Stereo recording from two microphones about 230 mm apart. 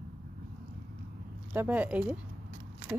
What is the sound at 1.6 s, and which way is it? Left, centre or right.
Speech, centre.